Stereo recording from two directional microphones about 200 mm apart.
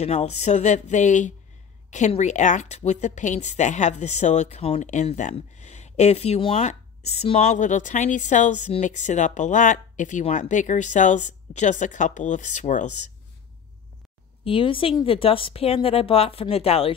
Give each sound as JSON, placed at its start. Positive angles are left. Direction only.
{"t": 0.0, "sound": "speech", "side_deg": 30}
{"t": 14.4, "sound": "speech", "side_deg": 25}